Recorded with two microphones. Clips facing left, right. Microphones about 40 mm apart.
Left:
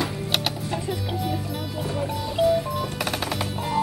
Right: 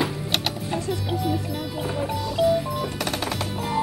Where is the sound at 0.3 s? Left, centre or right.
Centre.